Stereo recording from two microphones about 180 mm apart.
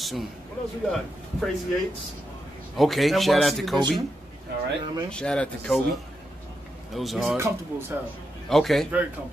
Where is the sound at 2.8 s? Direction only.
Centre (ahead or behind).